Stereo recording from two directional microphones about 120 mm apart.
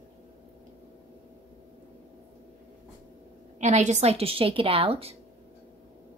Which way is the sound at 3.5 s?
80° right.